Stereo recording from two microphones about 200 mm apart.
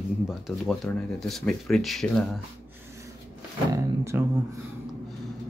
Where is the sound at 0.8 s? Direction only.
5° left (ahead or behind).